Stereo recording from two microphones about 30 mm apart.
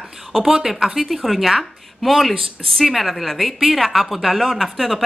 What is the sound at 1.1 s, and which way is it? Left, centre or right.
Speech, centre.